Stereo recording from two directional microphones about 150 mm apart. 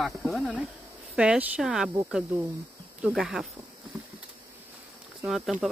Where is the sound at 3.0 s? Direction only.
5° right (ahead or behind).